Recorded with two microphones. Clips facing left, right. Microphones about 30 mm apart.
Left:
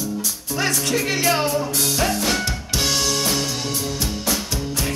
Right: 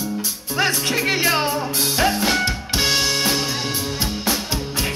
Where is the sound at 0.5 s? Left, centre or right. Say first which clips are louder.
Right 2 dB; right.